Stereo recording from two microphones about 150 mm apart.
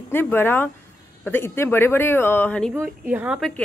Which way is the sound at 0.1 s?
15° left (ahead or behind).